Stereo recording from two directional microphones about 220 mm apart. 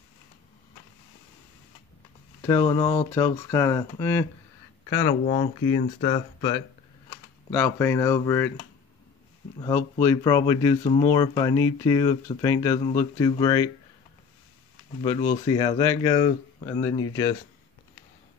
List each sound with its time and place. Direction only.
2.4 s speech: 15° left (ahead or behind)
5.2 s speech: 35° left (ahead or behind)
7.5 s speech: 10° left (ahead or behind)
9.6 s speech: 15° left (ahead or behind)
15.0 s speech: 20° left (ahead or behind)